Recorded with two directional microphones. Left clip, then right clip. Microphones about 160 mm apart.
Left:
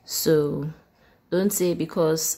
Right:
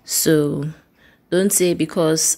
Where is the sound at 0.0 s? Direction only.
15° right (ahead or behind).